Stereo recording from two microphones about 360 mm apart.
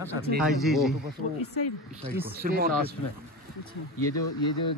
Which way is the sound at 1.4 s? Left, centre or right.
Left.